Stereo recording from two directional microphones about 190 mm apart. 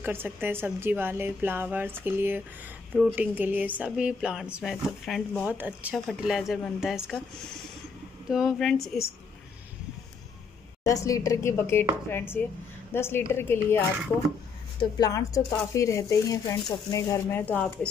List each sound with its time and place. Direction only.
0.0 s a woman's voice: 10° right (ahead or behind)
8.3 s a woman's voice: 5° right (ahead or behind)
10.8 s speech: 20° left (ahead or behind)
14.8 s speech: 20° left (ahead or behind)